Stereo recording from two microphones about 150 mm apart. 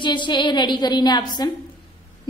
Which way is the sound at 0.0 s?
30° left (ahead or behind).